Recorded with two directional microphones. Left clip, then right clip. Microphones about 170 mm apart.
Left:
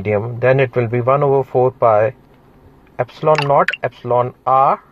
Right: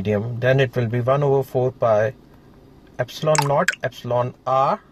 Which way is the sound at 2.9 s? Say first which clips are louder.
Left 5 dB; 20° left (ahead or behind).